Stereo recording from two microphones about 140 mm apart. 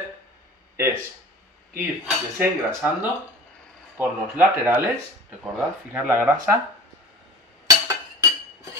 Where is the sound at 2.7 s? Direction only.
15° right (ahead or behind).